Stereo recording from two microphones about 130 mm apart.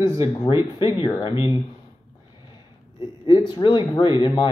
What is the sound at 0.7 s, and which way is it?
Speech, 40° left (ahead or behind).